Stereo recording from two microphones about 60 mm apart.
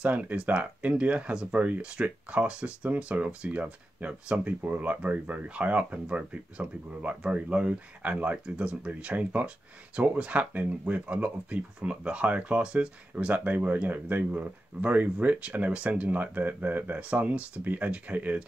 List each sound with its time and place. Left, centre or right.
0.0 s speech: right